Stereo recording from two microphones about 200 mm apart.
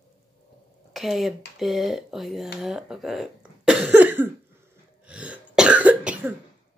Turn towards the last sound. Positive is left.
turn(degrees=-5)  # may be behind; listen again after turning